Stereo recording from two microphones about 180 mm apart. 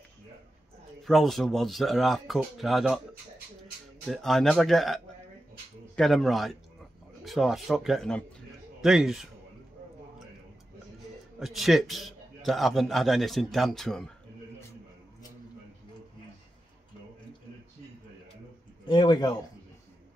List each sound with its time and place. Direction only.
1.0 s a man's voice: centre (ahead or behind)
4.0 s a man's voice: centre (ahead or behind)
11.3 s a man's voice: centre (ahead or behind)
18.9 s a man's voice: 25° left (ahead or behind)